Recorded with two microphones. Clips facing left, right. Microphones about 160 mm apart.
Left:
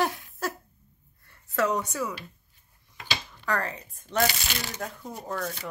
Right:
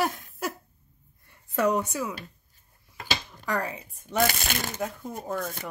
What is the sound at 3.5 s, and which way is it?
Speech, 10° right (ahead or behind).